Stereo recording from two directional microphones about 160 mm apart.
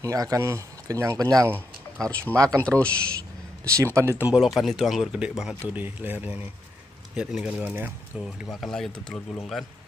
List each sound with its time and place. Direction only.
0.0 s speech: 20° right (ahead or behind)
2.0 s speech: 5° left (ahead or behind)
3.8 s speech: 15° right (ahead or behind)
4.3 s speech: centre (ahead or behind)
8.5 s speech: centre (ahead or behind)